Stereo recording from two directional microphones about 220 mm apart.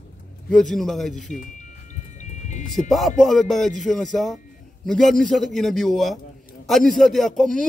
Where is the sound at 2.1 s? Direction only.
35° left (ahead or behind).